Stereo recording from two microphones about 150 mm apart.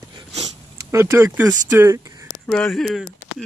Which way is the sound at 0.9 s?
20° right (ahead or behind).